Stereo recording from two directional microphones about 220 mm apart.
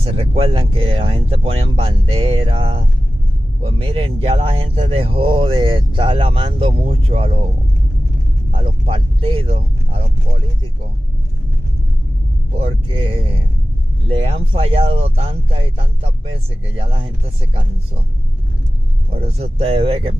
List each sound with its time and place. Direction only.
0.0 s speech: 25° right (ahead or behind)
8.8 s speech: 25° right (ahead or behind)
12.5 s speech: 25° right (ahead or behind)
19.1 s speech: 25° right (ahead or behind)